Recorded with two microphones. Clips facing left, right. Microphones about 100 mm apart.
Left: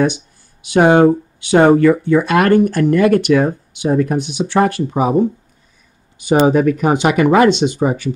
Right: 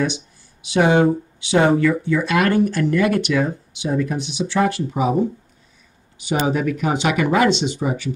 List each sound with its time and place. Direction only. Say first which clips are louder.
0.0 s speech: left 6 dB; 50° left (ahead or behind)